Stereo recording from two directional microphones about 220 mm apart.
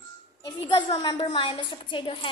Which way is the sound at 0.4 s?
20° left (ahead or behind).